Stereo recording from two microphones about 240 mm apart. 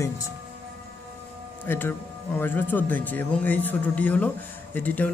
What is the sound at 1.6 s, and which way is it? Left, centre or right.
Speech, centre.